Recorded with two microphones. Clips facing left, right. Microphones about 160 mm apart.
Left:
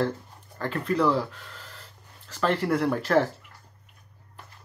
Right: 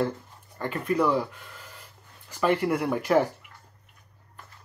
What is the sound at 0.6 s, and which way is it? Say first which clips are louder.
Speech: even; 10° right (ahead or behind).